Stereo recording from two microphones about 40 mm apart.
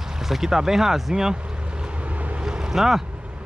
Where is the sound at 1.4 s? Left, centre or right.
Right.